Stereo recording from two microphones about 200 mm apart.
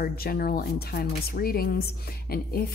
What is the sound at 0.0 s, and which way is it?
Speech, 50° left (ahead or behind).